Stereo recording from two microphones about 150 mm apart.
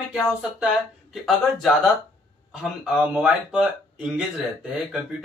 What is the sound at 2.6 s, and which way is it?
Speech, 5° right (ahead or behind).